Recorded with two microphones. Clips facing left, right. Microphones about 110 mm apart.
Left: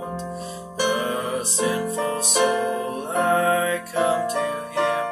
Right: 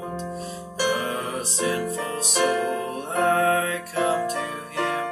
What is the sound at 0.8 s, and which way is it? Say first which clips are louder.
Music: left 2 dB; 20° left (ahead or behind).